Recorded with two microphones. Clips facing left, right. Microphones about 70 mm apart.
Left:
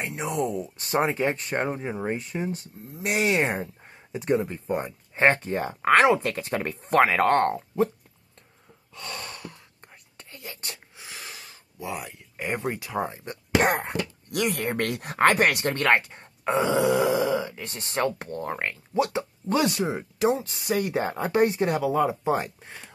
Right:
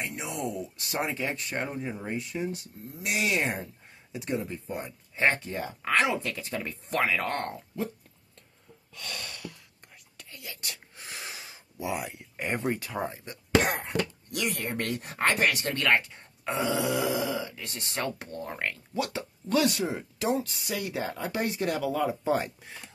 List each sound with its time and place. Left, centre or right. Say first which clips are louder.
0.0 s speech: left 6 dB; left
8.9 s gasp: left 3 dB; left
10.1 s whispering: left 3 dB; left
11.0 s a sound: even; centre
12.7 s speech: left 4 dB; centre
13.2 s speech: left 2 dB; left
18.7 s speech: left 6 dB; left